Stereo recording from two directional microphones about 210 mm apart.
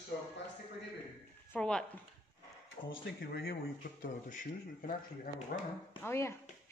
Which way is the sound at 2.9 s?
50° left (ahead or behind).